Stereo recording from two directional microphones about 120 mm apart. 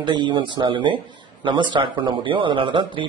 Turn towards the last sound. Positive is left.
turn(degrees=-45)  # may be behind; listen again after turning